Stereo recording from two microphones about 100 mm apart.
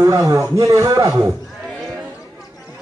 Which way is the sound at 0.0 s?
35° right (ahead or behind).